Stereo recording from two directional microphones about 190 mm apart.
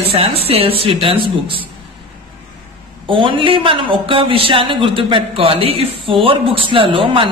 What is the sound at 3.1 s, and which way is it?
A woman's voice, 25° right (ahead or behind).